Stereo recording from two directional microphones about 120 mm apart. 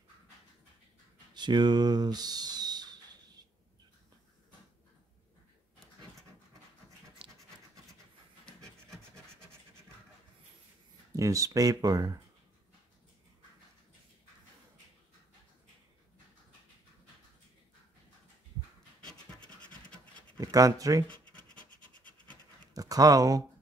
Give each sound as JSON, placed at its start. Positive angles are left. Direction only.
{"t": 1.3, "sound": "speech", "side_deg": -40}
{"t": 7.2, "sound": "scratch", "side_deg": -45}
{"t": 11.1, "sound": "speech", "side_deg": -25}
{"t": 19.0, "sound": "scratch", "side_deg": 10}
{"t": 20.3, "sound": "speech", "side_deg": -30}
{"t": 21.1, "sound": "scratch", "side_deg": 10}
{"t": 22.8, "sound": "speech", "side_deg": -30}